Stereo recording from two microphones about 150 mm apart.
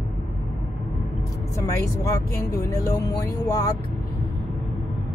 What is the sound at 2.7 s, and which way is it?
Music, 20° left (ahead or behind).